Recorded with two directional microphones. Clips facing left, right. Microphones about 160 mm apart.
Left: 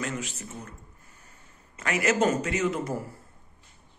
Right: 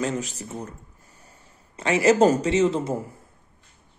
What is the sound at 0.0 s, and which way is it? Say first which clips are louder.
Speech: right 6 dB; 35° right (ahead or behind).